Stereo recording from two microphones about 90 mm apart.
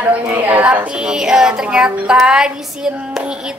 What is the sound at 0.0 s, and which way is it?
A woman's voice, 15° right (ahead or behind).